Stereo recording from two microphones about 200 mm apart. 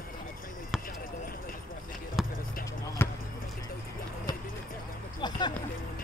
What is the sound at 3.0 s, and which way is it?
Basketball bounce, 10° left (ahead or behind).